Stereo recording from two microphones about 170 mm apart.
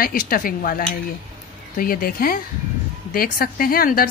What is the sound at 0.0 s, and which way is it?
A woman's voice, 55° left (ahead or behind).